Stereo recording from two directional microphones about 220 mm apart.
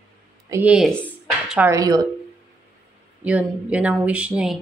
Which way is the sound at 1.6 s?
15° right (ahead or behind).